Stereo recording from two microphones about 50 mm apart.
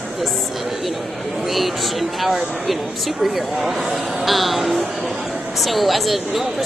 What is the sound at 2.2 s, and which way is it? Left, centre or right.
Speech, centre.